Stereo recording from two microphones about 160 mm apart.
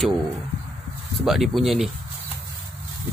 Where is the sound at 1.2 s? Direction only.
Centre (ahead or behind).